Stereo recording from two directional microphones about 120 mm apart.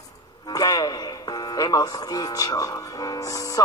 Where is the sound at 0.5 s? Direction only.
35° left (ahead or behind).